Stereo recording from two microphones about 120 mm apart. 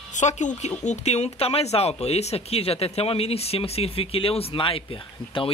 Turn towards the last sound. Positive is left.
turn(degrees=45)  # may be behind; listen again after turning